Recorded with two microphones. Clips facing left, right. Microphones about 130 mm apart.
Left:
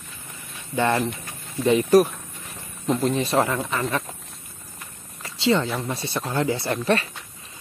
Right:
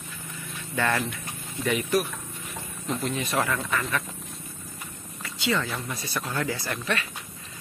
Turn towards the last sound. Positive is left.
turn(degrees=35)  # may be behind; listen again after turning